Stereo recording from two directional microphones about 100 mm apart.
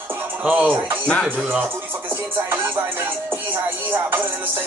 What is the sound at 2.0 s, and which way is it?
Music, 25° right (ahead or behind).